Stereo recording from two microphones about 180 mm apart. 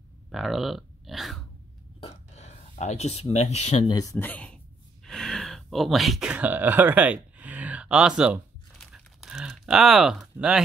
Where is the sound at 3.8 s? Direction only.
20° left (ahead or behind).